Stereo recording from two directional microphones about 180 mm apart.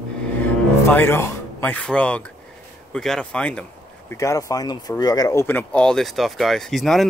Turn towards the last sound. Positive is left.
turn(degrees=0)  # may be behind; listen again after turning